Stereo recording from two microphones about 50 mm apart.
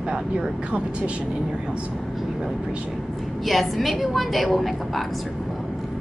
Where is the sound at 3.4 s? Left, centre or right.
Centre.